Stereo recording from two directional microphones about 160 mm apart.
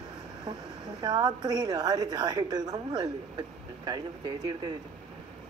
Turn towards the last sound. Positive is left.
turn(degrees=-25)  # may be behind; listen again after turning